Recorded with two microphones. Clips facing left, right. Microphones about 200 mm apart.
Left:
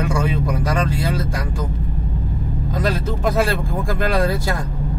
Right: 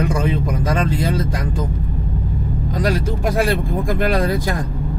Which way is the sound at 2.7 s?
15° right (ahead or behind).